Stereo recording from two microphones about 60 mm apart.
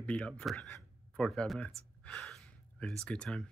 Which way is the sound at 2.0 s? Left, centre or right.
Centre.